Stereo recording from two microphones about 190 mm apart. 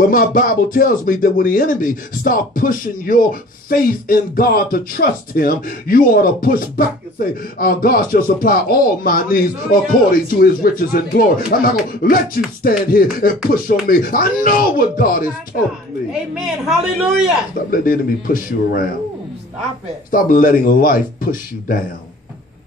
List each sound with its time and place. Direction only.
0.1 s speech: 45° left (ahead or behind)
16.1 s a man's voice: 5° right (ahead or behind)
17.6 s speech: 50° left (ahead or behind)
20.1 s speech: 45° left (ahead or behind)